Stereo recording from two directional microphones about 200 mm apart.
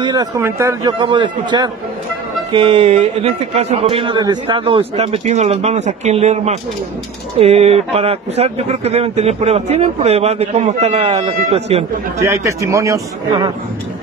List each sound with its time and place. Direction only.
0.0 s a man's voice: 20° right (ahead or behind)
12.2 s a man's voice: 15° right (ahead or behind)